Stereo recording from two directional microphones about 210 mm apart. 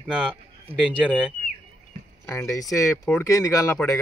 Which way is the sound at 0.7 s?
25° right (ahead or behind).